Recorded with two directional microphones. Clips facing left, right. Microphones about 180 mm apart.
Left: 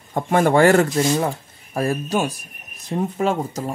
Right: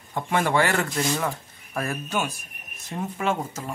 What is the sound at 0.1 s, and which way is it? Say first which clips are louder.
Speech: left 7 dB; 45° left (ahead or behind).